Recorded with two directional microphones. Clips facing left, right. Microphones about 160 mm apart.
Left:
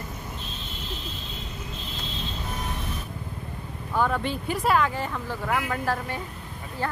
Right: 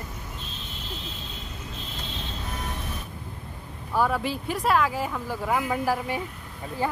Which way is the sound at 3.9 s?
5° right (ahead or behind).